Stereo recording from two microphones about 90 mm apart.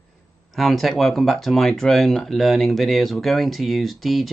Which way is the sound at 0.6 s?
Centre (ahead or behind).